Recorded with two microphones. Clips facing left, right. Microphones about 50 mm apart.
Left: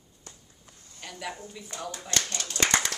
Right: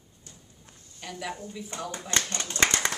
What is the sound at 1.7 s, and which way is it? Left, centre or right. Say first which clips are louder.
Speech: right 2 dB; right.